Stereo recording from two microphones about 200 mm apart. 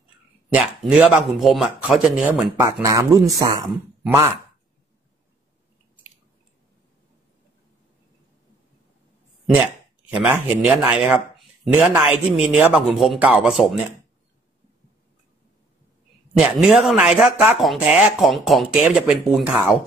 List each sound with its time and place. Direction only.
0.5 s speech: 5° right (ahead or behind)
2.8 s speech: 15° right (ahead or behind)
10.1 s speech: 5° right (ahead or behind)
16.3 s speech: centre (ahead or behind)